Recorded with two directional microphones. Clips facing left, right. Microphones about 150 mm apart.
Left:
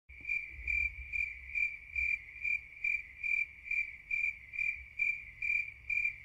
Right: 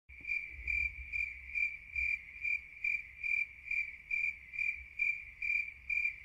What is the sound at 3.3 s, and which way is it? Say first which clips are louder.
Cricket: left 1 dB; 25° left (ahead or behind).